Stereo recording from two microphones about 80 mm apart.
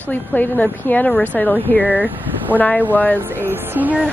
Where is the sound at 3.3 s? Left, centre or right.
Right.